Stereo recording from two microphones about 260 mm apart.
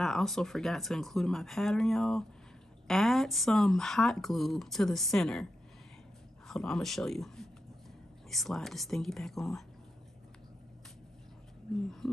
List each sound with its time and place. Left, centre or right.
0.0 s speech: centre
11.7 s speech: centre